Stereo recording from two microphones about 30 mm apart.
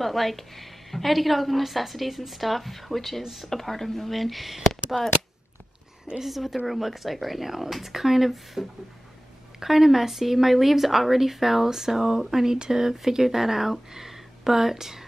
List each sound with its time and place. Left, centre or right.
0.0 s a woman's voice: centre
6.2 s a woman's voice: centre